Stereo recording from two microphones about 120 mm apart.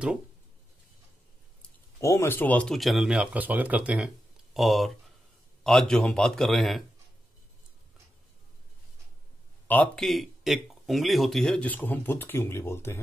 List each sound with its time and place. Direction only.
2.0 s speech: 25° left (ahead or behind)
2.7 s a man's voice: centre (ahead or behind)
9.7 s speech: 15° left (ahead or behind)
10.0 s speech: centre (ahead or behind); by 13.0 s 20° left (ahead or behind)